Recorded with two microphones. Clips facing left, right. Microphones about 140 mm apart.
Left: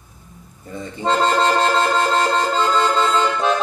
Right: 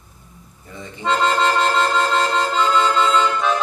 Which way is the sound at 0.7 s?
35° left (ahead or behind).